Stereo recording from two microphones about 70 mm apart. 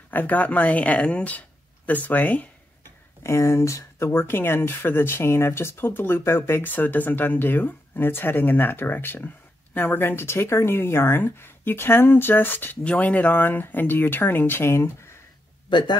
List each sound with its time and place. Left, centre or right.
0.1 s speech: left
3.3 s speech: left
4.2 s speech: left